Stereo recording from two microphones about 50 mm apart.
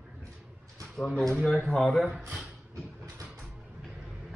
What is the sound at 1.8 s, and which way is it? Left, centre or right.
Speech, centre.